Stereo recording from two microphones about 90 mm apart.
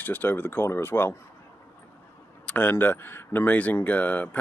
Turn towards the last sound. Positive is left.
turn(degrees=20)  # may be behind; listen again after turning